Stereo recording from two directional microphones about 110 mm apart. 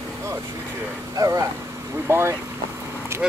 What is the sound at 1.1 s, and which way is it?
Speech, 35° right (ahead or behind).